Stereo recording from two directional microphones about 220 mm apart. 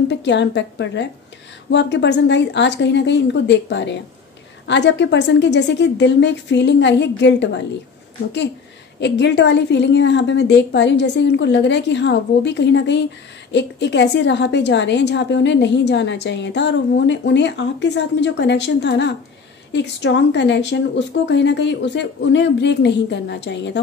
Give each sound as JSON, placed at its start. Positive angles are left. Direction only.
{"t": 0.1, "sound": "a woman's voice", "side_deg": 55}
{"t": 9.0, "sound": "a woman's voice", "side_deg": 50}